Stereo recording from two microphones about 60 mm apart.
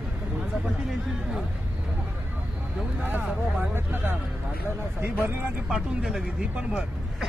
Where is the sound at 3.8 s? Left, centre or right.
Right.